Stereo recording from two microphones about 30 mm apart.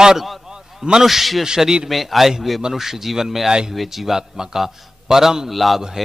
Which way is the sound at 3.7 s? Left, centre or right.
Centre.